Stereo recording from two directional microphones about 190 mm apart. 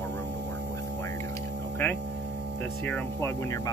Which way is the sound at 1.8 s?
10° left (ahead or behind).